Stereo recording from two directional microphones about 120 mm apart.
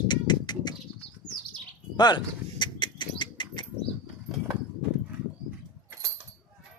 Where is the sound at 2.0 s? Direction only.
40° left (ahead or behind).